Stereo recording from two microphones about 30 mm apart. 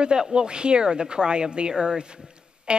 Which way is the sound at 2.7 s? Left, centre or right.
Right.